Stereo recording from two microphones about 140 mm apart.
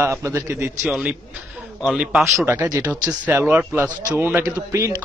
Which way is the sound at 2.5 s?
20° right (ahead or behind).